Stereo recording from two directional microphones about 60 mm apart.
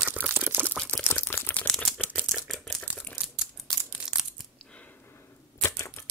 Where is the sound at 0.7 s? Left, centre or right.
Centre.